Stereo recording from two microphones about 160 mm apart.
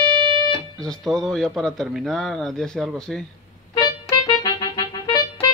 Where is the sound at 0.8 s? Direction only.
5° left (ahead or behind).